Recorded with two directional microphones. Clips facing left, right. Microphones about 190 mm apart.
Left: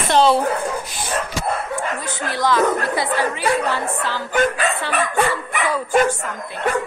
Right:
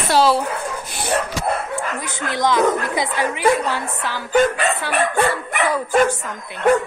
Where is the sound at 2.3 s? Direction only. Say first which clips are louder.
Right 1 dB; 15° right (ahead or behind).